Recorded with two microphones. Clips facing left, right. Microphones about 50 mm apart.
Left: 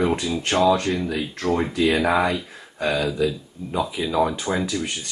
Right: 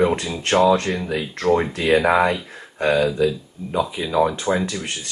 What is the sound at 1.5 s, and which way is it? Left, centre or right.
Speech, centre.